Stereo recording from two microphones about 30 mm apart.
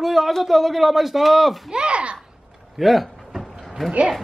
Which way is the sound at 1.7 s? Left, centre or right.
Right.